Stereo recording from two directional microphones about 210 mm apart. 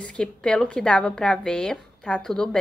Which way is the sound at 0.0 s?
5° left (ahead or behind).